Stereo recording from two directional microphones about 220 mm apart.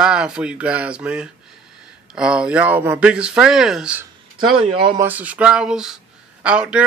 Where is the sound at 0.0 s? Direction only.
5° right (ahead or behind).